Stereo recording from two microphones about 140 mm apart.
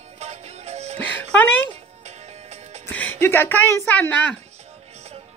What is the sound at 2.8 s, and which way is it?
Speech, 10° left (ahead or behind).